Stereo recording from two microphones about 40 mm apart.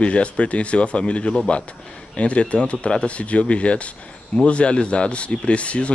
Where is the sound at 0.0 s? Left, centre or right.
Left.